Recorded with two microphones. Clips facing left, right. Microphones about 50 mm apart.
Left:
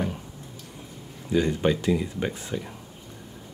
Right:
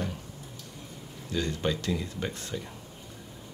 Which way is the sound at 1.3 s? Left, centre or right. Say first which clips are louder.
Left 7 dB; centre.